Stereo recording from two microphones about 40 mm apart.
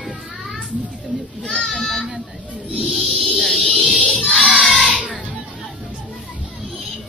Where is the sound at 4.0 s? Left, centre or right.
Left.